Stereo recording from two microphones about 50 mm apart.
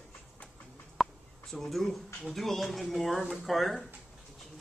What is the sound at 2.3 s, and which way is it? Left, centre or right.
Speech, centre.